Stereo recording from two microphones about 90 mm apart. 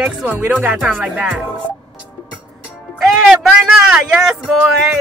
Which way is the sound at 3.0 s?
5° right (ahead or behind).